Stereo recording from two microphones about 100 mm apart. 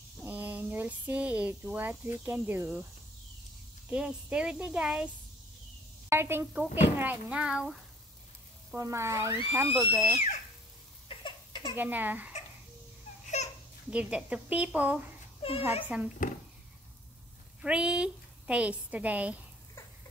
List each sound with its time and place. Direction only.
0.2 s speech: 15° right (ahead or behind)
3.9 s speech: 10° right (ahead or behind)
6.0 s a woman's voice: 25° right (ahead or behind); by 7.8 s 5° right (ahead or behind)
8.7 s speech: 30° right (ahead or behind)
11.1 s a sound: 60° left (ahead or behind)
11.7 s speech: 20° right (ahead or behind)
13.4 s a sound: 90° left
13.8 s speech: 10° right (ahead or behind)
15.4 s speech: 70° left (ahead or behind)
15.8 s speech: 15° right (ahead or behind)
17.6 s a woman's voice: 10° right (ahead or behind)